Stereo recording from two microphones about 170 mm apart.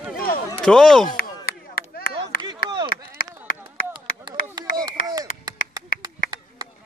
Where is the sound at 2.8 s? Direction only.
55° left (ahead or behind).